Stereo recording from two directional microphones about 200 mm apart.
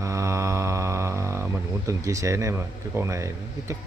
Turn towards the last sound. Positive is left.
turn(degrees=-15)  # may be behind; listen again after turning